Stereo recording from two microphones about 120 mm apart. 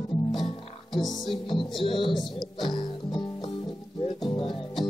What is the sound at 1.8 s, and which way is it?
Speech, 45° left (ahead or behind).